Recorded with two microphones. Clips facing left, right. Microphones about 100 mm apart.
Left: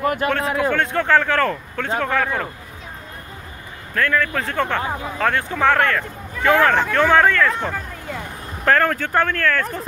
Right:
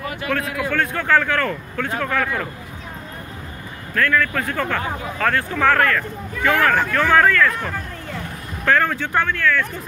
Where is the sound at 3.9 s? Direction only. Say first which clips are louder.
Even; 25° left (ahead or behind).